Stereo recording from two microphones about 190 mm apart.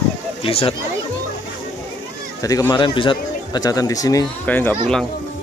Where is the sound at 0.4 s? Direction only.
30° left (ahead or behind).